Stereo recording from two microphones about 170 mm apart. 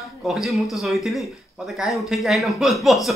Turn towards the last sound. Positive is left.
turn(degrees=0)  # may be behind; listen again after turning